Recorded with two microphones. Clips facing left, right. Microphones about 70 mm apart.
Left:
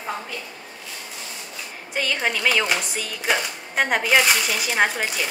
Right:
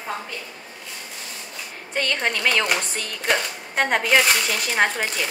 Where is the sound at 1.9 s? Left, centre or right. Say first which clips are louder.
Even; centre.